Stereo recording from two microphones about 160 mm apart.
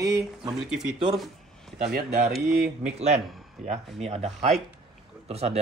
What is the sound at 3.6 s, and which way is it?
Speech, 45° right (ahead or behind).